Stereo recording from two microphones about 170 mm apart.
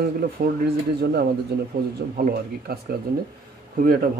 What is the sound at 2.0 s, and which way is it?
Speech, 65° right (ahead or behind).